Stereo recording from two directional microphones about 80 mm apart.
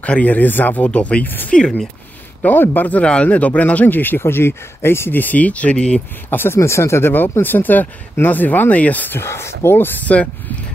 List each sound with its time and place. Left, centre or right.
0.0 s a man's voice: centre
1.6 s speech: centre
2.4 s a man's voice: left
6.3 s a man's voice: left